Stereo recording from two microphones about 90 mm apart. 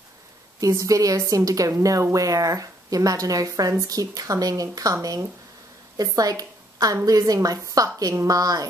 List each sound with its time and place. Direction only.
0.6 s a woman's voice: 40° right (ahead or behind)